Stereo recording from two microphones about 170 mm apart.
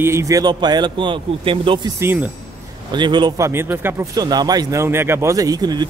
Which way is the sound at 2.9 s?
25° right (ahead or behind).